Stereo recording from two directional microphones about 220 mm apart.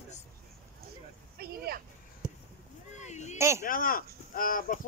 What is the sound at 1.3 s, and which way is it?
Speech, 45° right (ahead or behind).